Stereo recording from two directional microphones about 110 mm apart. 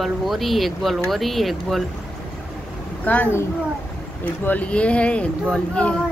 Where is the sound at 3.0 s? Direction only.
15° left (ahead or behind).